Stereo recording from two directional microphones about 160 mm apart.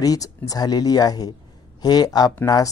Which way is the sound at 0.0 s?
20° left (ahead or behind).